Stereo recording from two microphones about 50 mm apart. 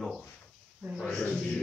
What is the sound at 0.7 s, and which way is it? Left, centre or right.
Speech, right.